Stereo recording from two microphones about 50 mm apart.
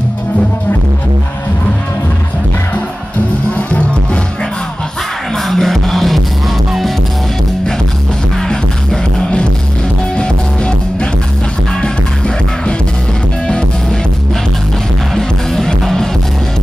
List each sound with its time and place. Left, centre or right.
3.5 s music: left
5.3 s music: centre
8.4 s music: centre
15.1 s music: centre